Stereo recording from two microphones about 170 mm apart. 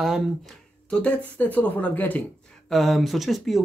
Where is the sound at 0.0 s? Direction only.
Centre (ahead or behind).